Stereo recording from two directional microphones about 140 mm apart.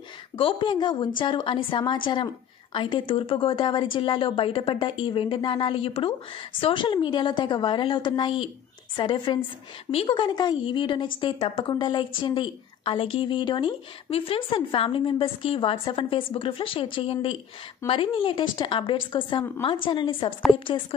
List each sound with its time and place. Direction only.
0.4 s a woman's voice: 35° left (ahead or behind)